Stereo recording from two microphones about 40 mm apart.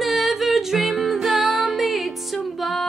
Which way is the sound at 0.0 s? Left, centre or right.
Centre.